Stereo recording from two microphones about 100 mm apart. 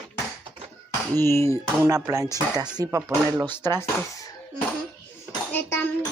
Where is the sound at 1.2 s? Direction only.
25° left (ahead or behind).